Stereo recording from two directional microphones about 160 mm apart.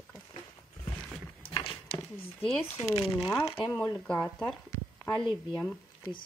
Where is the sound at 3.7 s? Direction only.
10° left (ahead or behind).